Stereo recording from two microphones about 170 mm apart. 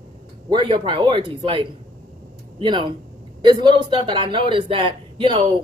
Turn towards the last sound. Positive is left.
turn(degrees=-30)  # may be behind; listen again after turning